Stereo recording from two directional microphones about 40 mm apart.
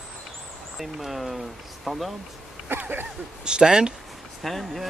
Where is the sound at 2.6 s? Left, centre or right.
Right.